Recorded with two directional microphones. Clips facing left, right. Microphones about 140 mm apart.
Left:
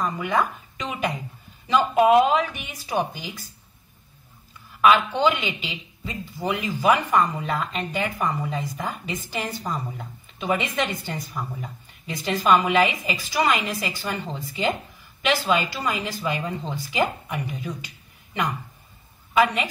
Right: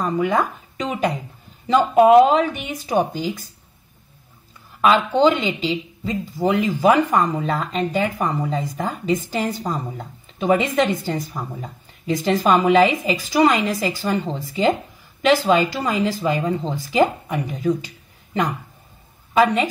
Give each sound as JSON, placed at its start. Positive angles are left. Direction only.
{"t": 0.2, "sound": "speech", "side_deg": -40}
{"t": 5.2, "sound": "speech", "side_deg": -40}
{"t": 9.7, "sound": "speech", "side_deg": -25}
{"t": 10.4, "sound": "a woman's voice", "side_deg": -45}